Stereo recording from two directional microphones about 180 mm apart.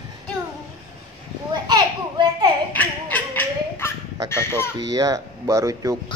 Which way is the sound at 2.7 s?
10° left (ahead or behind).